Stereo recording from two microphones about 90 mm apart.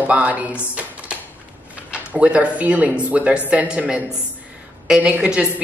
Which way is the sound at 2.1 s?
15° right (ahead or behind).